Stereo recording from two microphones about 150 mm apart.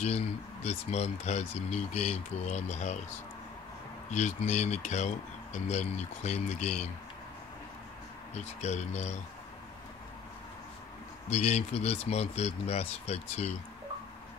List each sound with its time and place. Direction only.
0.0 s speech: 45° left (ahead or behind)
4.1 s speech: 50° left (ahead or behind)
8.5 s speech: 50° left (ahead or behind)
11.2 s speech: 50° left (ahead or behind)